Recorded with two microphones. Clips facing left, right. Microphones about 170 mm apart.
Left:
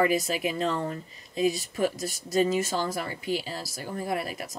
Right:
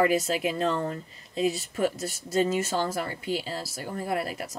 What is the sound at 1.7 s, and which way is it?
Speech, 10° left (ahead or behind).